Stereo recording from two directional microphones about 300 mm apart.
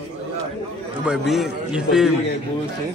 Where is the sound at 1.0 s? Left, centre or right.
Centre.